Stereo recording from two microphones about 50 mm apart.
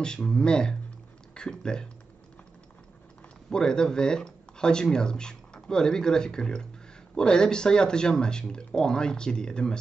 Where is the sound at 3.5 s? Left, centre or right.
Centre.